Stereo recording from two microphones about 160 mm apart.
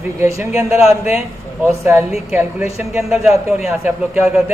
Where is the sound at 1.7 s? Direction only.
15° right (ahead or behind).